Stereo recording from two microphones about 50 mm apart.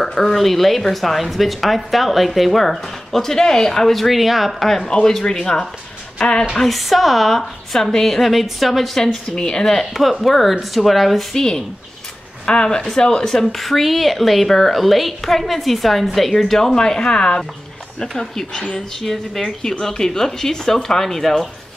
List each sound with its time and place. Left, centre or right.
0.0 s speech: centre
6.5 s speech: centre
12.4 s speech: centre